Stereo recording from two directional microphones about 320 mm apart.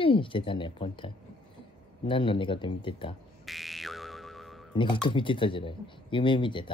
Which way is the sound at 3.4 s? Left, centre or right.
Centre.